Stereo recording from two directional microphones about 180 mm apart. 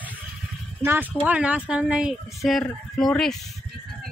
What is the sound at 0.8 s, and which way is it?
Speech, 10° right (ahead or behind).